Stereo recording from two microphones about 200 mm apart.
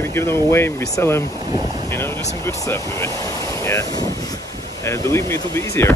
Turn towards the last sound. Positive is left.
turn(degrees=15)  # may be behind; listen again after turning